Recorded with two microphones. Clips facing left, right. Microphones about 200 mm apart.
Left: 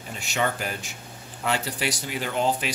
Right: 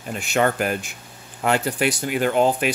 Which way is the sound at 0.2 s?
55° right (ahead or behind).